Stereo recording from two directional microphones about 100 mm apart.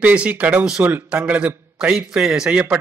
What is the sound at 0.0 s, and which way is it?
A man's voice, 15° right (ahead or behind).